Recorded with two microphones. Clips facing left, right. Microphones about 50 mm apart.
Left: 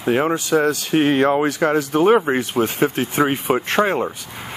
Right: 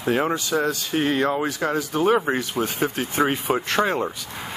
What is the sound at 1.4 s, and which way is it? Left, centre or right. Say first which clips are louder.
Speech: left 6 dB; left.